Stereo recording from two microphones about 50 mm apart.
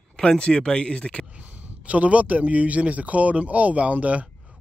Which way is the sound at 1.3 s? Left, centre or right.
Right.